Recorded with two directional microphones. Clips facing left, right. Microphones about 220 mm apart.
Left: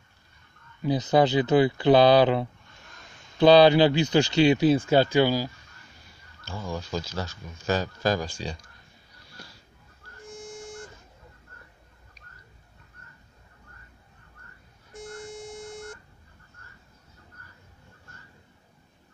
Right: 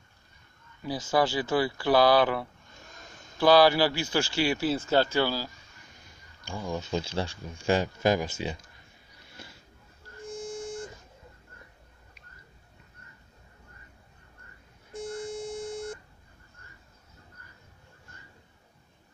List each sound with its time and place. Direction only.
0.8 s speech: 20° left (ahead or behind)
6.4 s speech: 15° right (ahead or behind)